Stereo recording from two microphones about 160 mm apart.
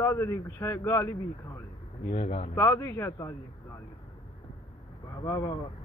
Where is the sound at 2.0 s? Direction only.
45° left (ahead or behind).